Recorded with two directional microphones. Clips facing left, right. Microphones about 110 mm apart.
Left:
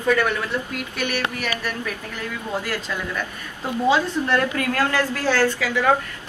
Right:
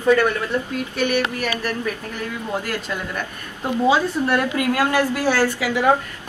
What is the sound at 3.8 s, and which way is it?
A woman's voice, 10° right (ahead or behind).